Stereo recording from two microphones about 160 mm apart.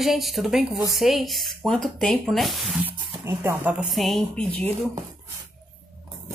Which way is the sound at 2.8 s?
10° right (ahead or behind).